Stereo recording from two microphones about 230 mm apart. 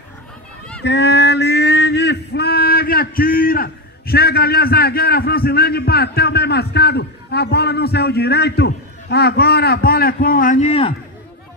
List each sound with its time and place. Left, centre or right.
0.8 s male singing: left